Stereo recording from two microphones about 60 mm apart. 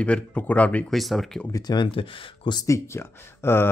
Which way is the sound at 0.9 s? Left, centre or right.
Centre.